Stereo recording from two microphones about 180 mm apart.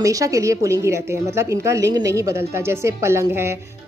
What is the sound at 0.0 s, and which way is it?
Speech, 20° right (ahead or behind).